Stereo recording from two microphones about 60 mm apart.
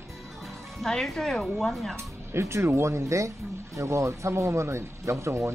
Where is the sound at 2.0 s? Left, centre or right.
Right.